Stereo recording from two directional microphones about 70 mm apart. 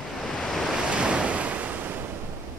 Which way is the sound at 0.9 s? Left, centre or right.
Centre.